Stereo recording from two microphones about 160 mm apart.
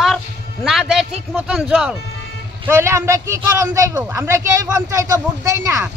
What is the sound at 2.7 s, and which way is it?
A man's voice, 15° right (ahead or behind).